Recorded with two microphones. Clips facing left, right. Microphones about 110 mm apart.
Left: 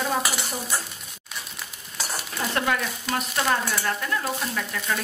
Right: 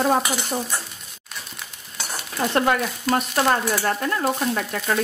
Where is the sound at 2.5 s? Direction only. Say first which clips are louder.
Right 5 dB; 35° right (ahead or behind).